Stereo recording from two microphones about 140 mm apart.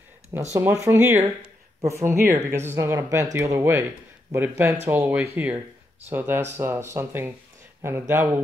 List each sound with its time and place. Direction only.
0.6 s speech: 15° right (ahead or behind)